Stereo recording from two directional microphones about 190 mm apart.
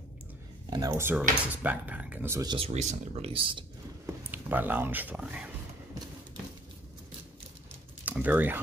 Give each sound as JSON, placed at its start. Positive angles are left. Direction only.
{"t": 0.7, "sound": "speech", "side_deg": -20}
{"t": 2.5, "sound": "speech", "side_deg": -35}
{"t": 4.0, "sound": "speech", "side_deg": -10}
{"t": 8.0, "sound": "typing", "side_deg": -10}